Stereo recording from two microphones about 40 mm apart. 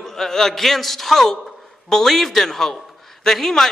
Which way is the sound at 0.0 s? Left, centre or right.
Centre.